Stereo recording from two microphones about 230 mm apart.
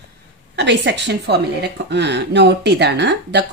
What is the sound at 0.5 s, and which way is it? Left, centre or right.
Speech, right.